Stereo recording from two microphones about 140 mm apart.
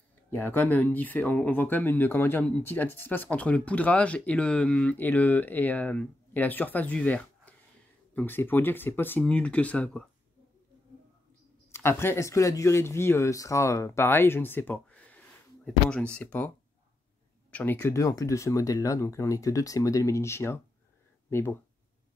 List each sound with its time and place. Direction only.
0.3 s speech: 15° left (ahead or behind)
11.7 s speech: 15° left (ahead or behind)